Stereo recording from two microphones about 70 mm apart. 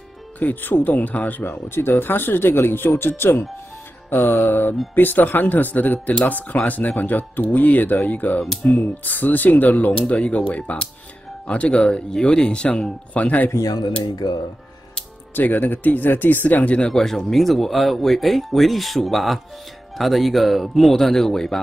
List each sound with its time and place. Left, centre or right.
0.4 s speech: left
1.4 s speech: left
13.7 s speech: left
14.0 s speech: left
15.3 s speech: left
16.9 s speech: centre